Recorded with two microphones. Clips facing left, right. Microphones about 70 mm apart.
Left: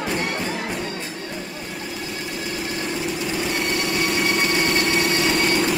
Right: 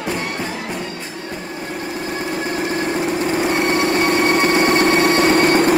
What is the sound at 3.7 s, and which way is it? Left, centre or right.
Vehicle, right.